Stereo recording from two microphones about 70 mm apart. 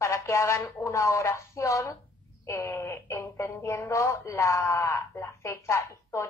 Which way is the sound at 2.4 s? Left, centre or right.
Left.